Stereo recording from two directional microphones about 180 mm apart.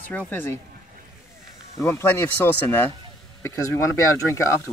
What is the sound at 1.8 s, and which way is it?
Speech, 10° left (ahead or behind).